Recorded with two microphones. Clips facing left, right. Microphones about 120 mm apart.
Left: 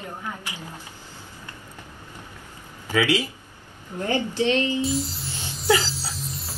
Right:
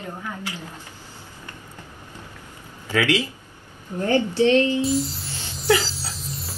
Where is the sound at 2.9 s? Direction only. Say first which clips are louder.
Right 1 dB; 15° left (ahead or behind).